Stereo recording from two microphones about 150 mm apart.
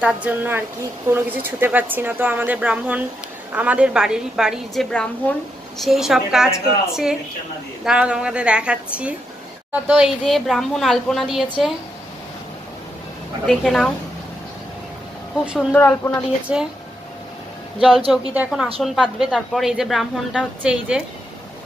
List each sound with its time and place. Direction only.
0.0 s a woman's voice: 10° right (ahead or behind)
13.5 s a woman's voice: centre (ahead or behind)
15.7 s speech: 15° left (ahead or behind)
16.5 s a woman's voice: 5° right (ahead or behind)
17.7 s a woman's voice: centre (ahead or behind)